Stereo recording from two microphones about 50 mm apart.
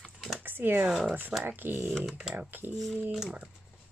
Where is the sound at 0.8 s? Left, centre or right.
Centre.